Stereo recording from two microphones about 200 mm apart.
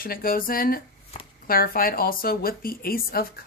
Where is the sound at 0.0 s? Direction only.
45° left (ahead or behind).